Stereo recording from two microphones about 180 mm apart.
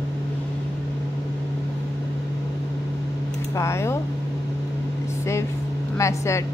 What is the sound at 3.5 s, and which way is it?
Speech, 15° left (ahead or behind).